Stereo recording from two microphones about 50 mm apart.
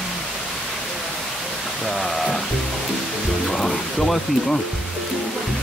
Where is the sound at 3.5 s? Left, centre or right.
Centre.